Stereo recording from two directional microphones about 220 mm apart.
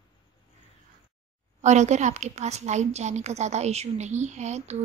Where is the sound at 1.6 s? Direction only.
30° right (ahead or behind).